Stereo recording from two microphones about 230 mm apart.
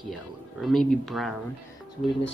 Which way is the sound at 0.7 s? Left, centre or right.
Centre.